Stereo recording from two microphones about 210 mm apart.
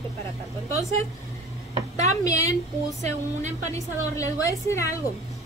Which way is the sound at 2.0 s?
15° left (ahead or behind).